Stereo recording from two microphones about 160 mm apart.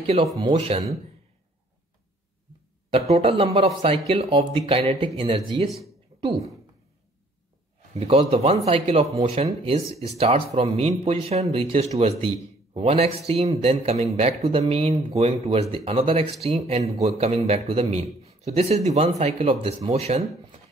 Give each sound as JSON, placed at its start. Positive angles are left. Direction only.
{"t": 0.0, "sound": "a man's voice", "side_deg": -35}
{"t": 3.1, "sound": "a man's voice", "side_deg": -40}
{"t": 7.9, "sound": "a man's voice", "side_deg": -40}